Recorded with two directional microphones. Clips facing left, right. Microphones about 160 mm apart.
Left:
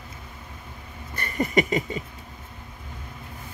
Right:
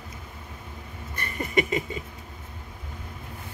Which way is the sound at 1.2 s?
40° left (ahead or behind).